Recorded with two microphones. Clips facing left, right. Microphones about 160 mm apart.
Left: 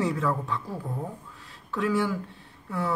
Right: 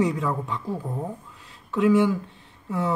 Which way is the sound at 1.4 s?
20° right (ahead or behind).